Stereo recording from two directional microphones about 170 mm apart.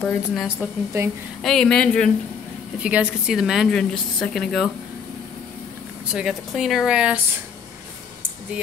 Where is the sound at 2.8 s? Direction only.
5° right (ahead or behind).